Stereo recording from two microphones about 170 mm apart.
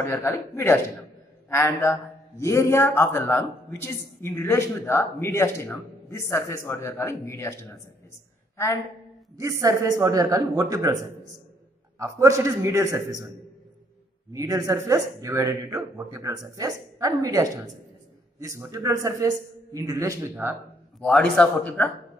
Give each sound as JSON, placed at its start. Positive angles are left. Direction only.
{"t": 0.1, "sound": "a man's voice", "side_deg": 15}
{"t": 9.4, "sound": "speech", "side_deg": -20}
{"t": 12.0, "sound": "a man's voice", "side_deg": -20}
{"t": 14.3, "sound": "a man's voice", "side_deg": -20}
{"t": 21.0, "sound": "a man's voice", "side_deg": 5}